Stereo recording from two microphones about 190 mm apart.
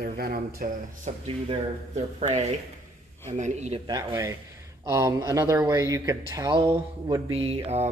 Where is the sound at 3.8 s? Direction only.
15° right (ahead or behind).